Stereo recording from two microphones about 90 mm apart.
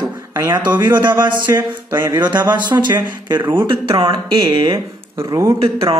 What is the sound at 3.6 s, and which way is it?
Speech, 70° right (ahead or behind).